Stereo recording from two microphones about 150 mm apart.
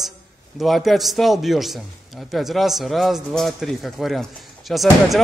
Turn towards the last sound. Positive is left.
turn(degrees=0)  # may be behind; listen again after turning